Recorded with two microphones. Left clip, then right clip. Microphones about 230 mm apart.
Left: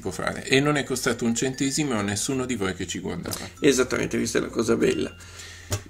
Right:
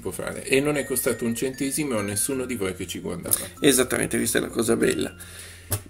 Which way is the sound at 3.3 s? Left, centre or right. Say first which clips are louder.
Even; centre.